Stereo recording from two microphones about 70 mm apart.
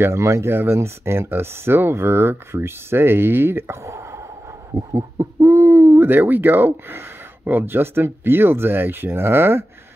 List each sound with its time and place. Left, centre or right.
0.0 s speech: right